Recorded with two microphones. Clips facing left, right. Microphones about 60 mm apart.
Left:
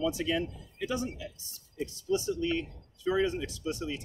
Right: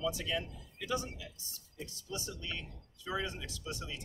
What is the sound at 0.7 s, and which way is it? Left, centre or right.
Speech, left.